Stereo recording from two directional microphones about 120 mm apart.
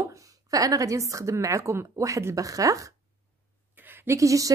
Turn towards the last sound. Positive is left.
turn(degrees=-25)  # may be behind; listen again after turning